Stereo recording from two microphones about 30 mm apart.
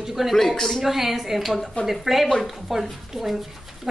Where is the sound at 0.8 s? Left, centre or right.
Centre.